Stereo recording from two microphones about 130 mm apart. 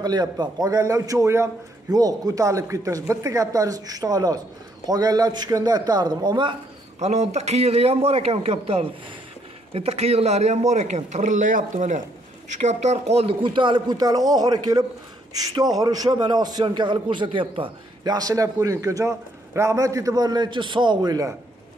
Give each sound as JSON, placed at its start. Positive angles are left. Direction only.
{"t": 0.0, "sound": "a man's voice", "side_deg": -30}
{"t": 7.0, "sound": "a man's voice", "side_deg": -60}